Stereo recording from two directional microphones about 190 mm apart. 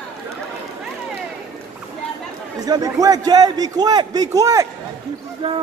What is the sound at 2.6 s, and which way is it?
A man's voice, 20° right (ahead or behind).